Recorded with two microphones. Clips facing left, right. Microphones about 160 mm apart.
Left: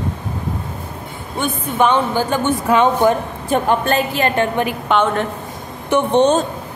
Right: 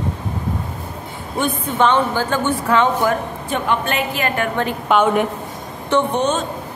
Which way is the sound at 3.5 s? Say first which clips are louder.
Left 5 dB; 40° left (ahead or behind).